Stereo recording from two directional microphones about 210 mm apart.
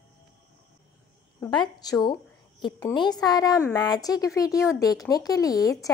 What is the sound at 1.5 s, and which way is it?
A woman's voice, 20° left (ahead or behind).